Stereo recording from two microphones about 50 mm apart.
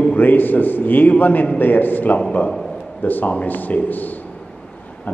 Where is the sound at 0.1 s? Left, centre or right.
Left.